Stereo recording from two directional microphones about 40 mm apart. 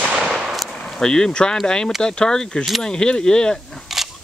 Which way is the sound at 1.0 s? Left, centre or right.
Centre.